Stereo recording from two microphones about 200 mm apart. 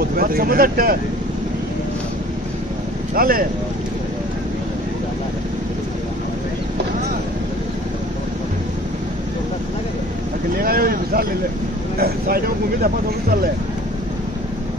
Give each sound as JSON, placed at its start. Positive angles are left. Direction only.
{"t": 0.0, "sound": "speech", "side_deg": -45}
{"t": 3.2, "sound": "speech", "side_deg": -45}
{"t": 10.5, "sound": "speech", "side_deg": -45}